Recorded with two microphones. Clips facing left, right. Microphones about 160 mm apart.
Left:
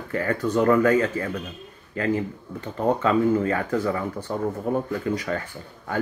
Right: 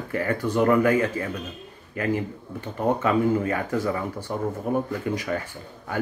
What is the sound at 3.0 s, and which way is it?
Speech, 15° right (ahead or behind).